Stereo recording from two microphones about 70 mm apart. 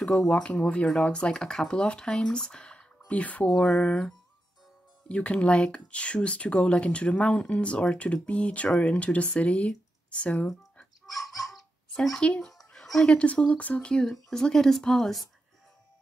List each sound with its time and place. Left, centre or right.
0.0 s speech: centre
5.0 s speech: centre
11.1 s dog: centre
12.2 s speech: centre
12.7 s music: centre
13.2 s speech: centre